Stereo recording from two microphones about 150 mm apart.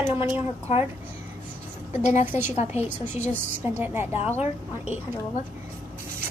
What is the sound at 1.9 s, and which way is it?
Speech, 50° left (ahead or behind).